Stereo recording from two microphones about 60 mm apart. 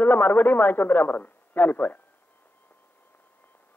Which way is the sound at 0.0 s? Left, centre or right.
Left.